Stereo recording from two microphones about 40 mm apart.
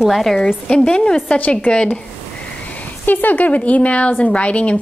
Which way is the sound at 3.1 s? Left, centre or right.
Left.